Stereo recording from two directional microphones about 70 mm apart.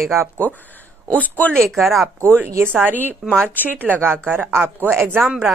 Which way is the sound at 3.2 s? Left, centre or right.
Centre.